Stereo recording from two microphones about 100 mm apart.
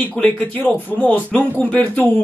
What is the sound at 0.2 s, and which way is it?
Speech, 15° left (ahead or behind).